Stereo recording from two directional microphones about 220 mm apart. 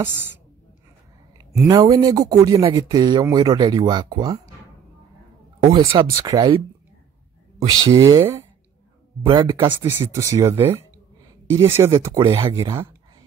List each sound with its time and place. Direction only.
0.0 s speech: 10° right (ahead or behind)
1.6 s speech: 15° right (ahead or behind)
5.6 s speech: 20° right (ahead or behind)
7.9 s speech: 15° right (ahead or behind)